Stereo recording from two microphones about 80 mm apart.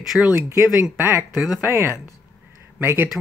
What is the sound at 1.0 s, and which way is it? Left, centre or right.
Speech, right.